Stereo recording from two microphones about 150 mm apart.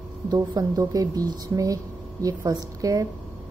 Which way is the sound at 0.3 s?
25° right (ahead or behind).